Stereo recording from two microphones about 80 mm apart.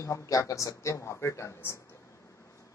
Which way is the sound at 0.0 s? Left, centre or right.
Left.